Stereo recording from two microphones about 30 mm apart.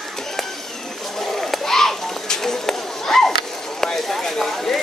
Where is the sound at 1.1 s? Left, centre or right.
Centre.